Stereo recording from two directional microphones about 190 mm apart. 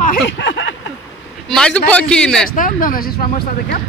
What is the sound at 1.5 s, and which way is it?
A man's voice, 5° left (ahead or behind).